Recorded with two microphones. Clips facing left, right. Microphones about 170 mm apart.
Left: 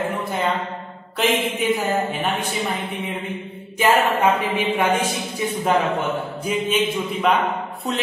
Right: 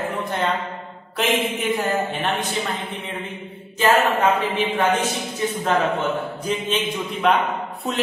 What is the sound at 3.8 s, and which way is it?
A man's voice, 10° left (ahead or behind).